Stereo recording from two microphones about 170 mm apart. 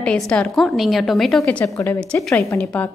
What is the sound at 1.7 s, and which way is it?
Speech, 20° left (ahead or behind).